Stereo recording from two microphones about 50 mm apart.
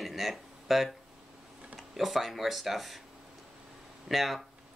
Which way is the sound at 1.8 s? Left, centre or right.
Centre.